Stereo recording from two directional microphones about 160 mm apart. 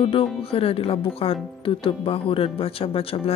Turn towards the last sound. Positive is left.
turn(degrees=35)  # may be behind; listen again after turning